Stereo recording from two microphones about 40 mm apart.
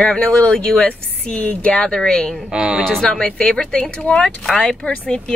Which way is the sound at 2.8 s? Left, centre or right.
Centre.